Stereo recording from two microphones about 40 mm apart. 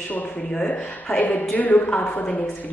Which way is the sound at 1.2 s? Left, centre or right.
Left.